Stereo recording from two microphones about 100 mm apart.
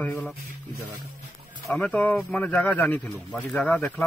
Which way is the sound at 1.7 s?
15° left (ahead or behind).